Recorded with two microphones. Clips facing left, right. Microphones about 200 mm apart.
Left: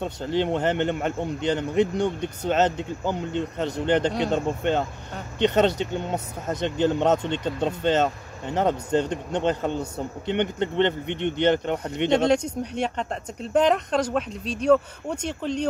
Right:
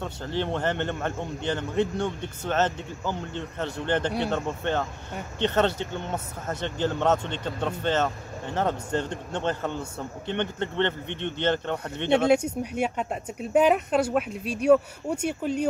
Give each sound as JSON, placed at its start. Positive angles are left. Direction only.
{"t": 0.0, "sound": "speech", "side_deg": 20}
{"t": 12.3, "sound": "speech", "side_deg": -10}